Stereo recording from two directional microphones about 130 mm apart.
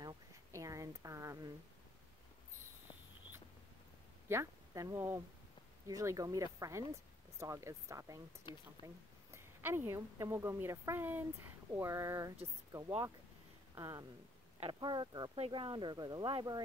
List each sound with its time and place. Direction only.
0.0 s a sound: 25° right (ahead or behind)
4.3 s a woman's voice: 25° right (ahead or behind)
8.5 s speech: 35° left (ahead or behind)
8.8 s a woman's voice: 20° right (ahead or behind)
13.7 s a woman's voice: 25° right (ahead or behind)
15.3 s speech: 45° right (ahead or behind)